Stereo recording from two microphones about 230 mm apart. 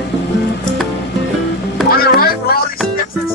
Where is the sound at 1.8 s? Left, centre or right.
Left.